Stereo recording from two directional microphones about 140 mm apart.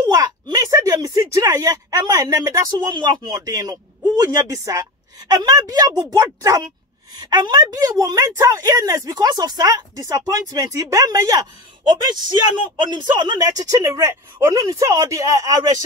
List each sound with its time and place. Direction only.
0.0 s a woman's voice: 30° right (ahead or behind)